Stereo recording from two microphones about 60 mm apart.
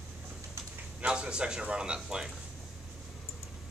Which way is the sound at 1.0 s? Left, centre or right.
Centre.